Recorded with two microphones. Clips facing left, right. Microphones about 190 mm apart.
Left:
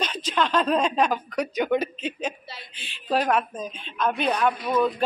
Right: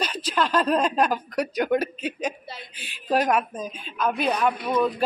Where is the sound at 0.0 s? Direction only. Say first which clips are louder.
Even; 5° right (ahead or behind).